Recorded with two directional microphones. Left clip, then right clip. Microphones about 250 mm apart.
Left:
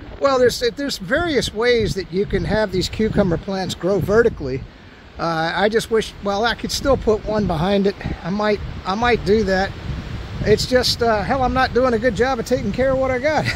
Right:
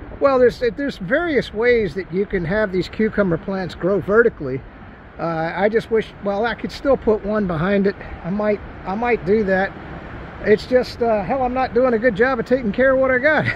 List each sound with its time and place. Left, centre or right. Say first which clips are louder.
0.2 s speech: right 1 dB; centre
10.8 s speech: left 1 dB; left; by 13.5 s centre